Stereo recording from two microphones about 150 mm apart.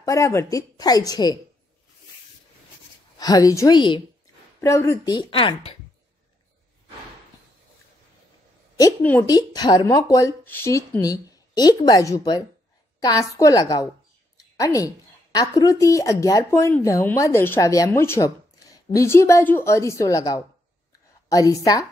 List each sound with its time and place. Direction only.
0.0 s speech: 20° left (ahead or behind)
3.2 s speech: 25° left (ahead or behind)
4.6 s speech: 20° left (ahead or behind)
5.1 s speech: 35° left (ahead or behind)
9.2 s speech: 25° left (ahead or behind)
14.3 s a sound: 20° left (ahead or behind)
15.3 s speech: 25° left (ahead or behind)